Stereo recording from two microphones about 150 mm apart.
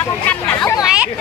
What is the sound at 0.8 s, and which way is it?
Hubbub, 5° right (ahead or behind).